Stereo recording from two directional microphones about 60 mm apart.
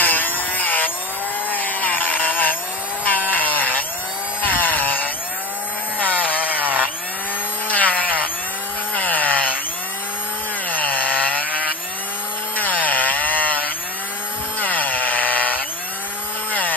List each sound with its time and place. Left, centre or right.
0.0 s a sound: left
1.5 s chainsaw: left
6.6 s wood: right
7.6 s chainsaw: left
8.9 s wood: left
10.7 s chainsaw: left
11.3 s wood: right
12.5 s chainsaw: left
14.6 s chainsaw: left